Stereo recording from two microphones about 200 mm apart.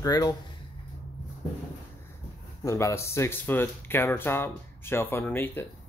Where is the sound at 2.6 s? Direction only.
15° left (ahead or behind).